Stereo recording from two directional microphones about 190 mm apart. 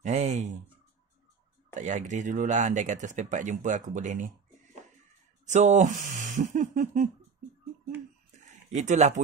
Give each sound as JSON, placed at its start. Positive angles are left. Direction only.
{"t": 0.0, "sound": "a sound", "side_deg": -35}
{"t": 1.7, "sound": "speech", "side_deg": -40}
{"t": 5.5, "sound": "speech", "side_deg": -40}
{"t": 8.7, "sound": "speech", "side_deg": -40}